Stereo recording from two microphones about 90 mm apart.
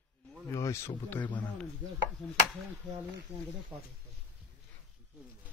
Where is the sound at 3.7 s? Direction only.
30° right (ahead or behind).